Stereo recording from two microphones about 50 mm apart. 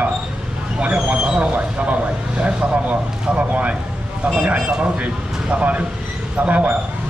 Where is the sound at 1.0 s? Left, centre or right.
Right.